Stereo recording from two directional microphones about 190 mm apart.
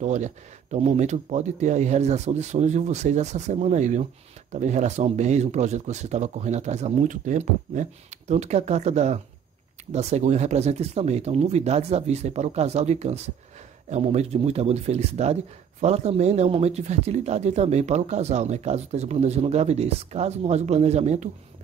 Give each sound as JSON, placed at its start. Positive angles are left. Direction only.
{"t": 0.0, "sound": "speech", "side_deg": -40}